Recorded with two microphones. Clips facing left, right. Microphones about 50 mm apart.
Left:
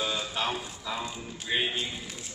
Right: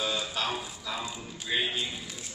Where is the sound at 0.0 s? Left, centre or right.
Centre.